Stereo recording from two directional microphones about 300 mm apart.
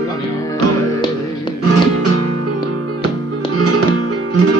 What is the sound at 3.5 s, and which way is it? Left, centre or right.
Music, right.